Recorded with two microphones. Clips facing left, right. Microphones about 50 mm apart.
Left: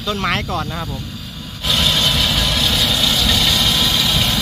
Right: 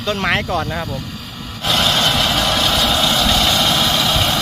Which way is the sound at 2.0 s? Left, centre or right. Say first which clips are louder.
Right 2 dB; right.